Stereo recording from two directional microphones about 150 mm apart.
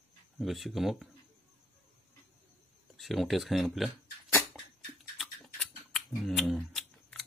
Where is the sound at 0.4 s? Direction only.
Centre (ahead or behind).